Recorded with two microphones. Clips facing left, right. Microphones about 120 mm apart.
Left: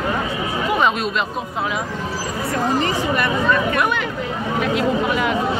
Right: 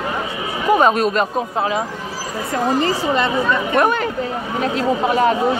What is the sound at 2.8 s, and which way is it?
Speech, 25° right (ahead or behind).